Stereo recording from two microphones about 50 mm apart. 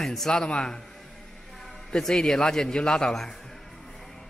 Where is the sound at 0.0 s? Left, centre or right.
Centre.